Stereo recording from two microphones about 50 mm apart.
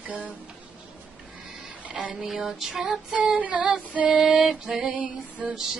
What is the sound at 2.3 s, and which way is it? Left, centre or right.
Female singing, centre.